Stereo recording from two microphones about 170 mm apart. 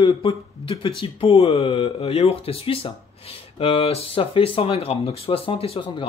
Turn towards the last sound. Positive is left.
turn(degrees=35)  # may be behind; listen again after turning